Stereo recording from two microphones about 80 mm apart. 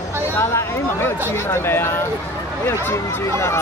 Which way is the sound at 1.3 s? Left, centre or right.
Left.